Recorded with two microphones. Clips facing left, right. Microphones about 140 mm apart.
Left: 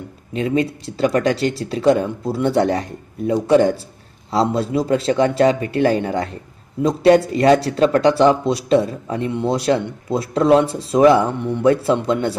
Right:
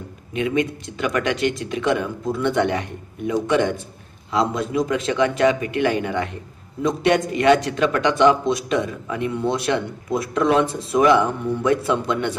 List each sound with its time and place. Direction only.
0.3 s speech: 35° left (ahead or behind)